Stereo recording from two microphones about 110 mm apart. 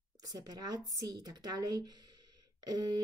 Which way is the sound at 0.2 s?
35° right (ahead or behind).